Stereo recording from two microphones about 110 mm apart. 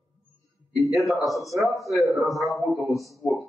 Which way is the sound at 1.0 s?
Centre (ahead or behind).